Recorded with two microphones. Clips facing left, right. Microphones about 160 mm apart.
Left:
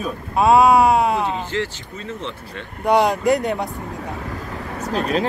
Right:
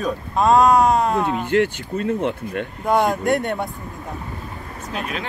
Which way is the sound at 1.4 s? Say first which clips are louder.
Right 7 dB; 55° right (ahead or behind).